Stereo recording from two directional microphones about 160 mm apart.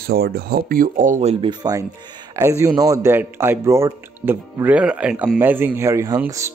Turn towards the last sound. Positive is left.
turn(degrees=-20)  # may be behind; listen again after turning